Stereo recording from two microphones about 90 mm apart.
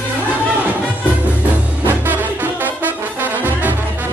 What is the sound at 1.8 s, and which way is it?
Brass instrument, 20° right (ahead or behind).